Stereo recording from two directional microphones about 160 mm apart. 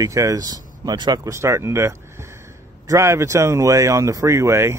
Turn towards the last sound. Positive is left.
turn(degrees=-15)  # may be behind; listen again after turning